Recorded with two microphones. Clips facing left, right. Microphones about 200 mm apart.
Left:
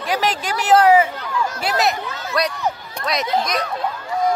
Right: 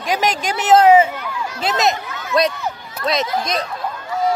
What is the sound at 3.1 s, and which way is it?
Speech, 30° right (ahead or behind).